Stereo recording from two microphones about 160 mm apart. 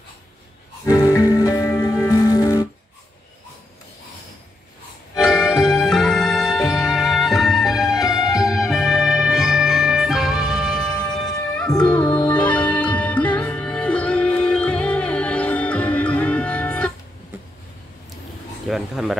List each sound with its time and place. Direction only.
0.8 s music: 25° left (ahead or behind)
5.1 s music: centre (ahead or behind)
18.7 s a sound: centre (ahead or behind)